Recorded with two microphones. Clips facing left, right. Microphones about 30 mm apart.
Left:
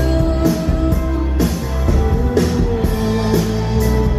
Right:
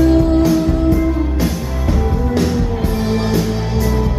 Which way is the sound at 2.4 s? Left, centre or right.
Centre.